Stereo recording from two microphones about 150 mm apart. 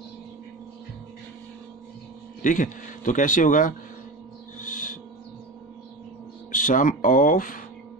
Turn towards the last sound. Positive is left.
turn(degrees=65)  # may be behind; listen again after turning